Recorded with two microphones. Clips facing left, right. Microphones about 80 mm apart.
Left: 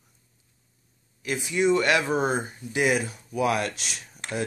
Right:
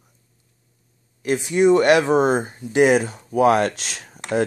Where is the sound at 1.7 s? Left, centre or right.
Right.